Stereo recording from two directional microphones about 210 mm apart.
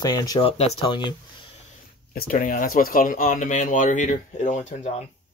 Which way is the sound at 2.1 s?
45° left (ahead or behind).